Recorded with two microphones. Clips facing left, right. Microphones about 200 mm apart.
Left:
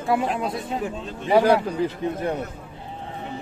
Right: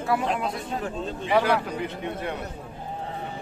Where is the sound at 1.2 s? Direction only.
30° left (ahead or behind).